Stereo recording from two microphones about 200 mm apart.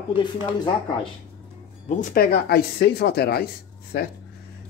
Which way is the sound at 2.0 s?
45° left (ahead or behind).